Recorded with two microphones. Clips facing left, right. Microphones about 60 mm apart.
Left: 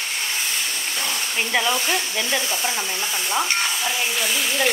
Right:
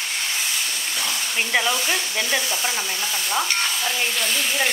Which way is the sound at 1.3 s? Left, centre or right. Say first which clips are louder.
Even; centre.